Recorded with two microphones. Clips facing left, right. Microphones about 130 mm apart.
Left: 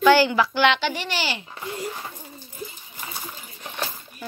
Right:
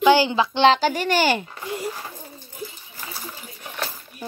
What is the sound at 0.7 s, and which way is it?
Speech, 40° right (ahead or behind).